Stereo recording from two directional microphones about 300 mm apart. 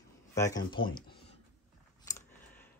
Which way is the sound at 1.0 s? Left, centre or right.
Centre.